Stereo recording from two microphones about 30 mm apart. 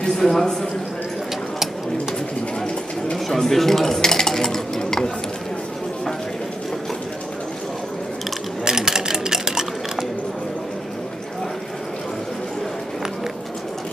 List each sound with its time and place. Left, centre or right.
0.2 s dishes: centre
3.3 s dishes: centre
8.6 s sewing machine: right